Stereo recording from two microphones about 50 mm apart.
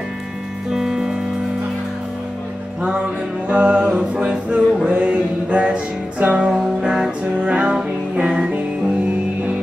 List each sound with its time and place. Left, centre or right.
0.7 s music: centre
2.8 s music: right
6.5 s music: centre